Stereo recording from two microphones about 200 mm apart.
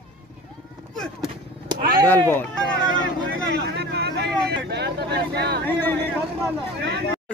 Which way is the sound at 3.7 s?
55° right (ahead or behind).